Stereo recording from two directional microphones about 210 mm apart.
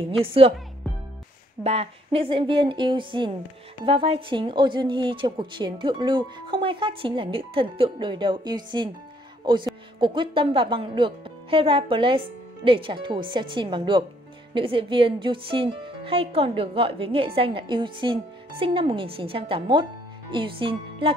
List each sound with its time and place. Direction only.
0.2 s a woman's voice: 25° right (ahead or behind)
1.6 s a woman's voice: 30° right (ahead or behind)